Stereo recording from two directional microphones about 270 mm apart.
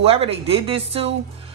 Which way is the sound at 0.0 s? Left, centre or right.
Right.